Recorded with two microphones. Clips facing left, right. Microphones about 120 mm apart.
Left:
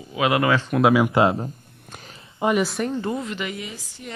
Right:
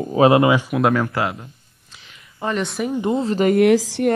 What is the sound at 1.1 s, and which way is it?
Speech, 25° left (ahead or behind).